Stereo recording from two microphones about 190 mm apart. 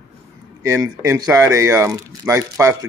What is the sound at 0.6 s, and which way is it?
Speech, 15° right (ahead or behind).